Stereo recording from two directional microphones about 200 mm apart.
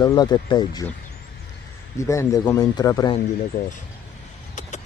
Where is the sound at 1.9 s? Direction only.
15° left (ahead or behind).